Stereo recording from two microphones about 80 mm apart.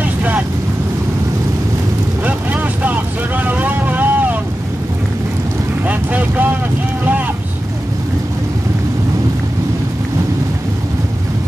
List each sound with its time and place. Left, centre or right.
0.0 s vehicle: centre
2.2 s vehicle: centre
5.9 s vehicle: centre